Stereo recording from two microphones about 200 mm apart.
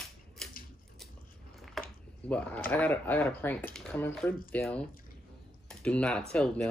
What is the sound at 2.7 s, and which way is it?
Speech, 10° left (ahead or behind).